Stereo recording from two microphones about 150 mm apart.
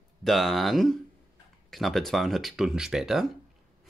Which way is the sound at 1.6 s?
Centre (ahead or behind).